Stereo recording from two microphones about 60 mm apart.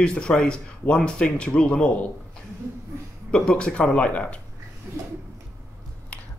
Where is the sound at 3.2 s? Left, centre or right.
Centre.